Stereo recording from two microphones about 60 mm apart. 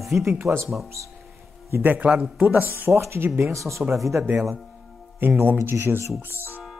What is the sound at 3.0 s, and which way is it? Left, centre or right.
Speech, right.